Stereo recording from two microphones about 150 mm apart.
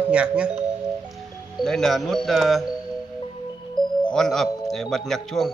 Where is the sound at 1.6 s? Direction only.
Centre (ahead or behind).